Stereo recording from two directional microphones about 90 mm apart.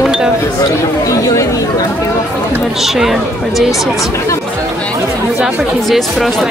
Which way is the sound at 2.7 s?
5° right (ahead or behind).